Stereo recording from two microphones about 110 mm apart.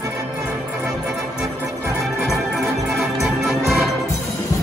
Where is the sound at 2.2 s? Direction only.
Centre (ahead or behind).